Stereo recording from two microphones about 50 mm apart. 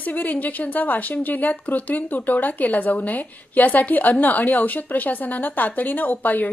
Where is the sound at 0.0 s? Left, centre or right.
Left.